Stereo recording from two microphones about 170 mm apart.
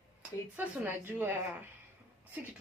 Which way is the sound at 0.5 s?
10° right (ahead or behind).